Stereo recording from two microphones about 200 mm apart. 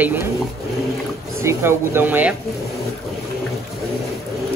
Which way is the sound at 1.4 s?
15° right (ahead or behind).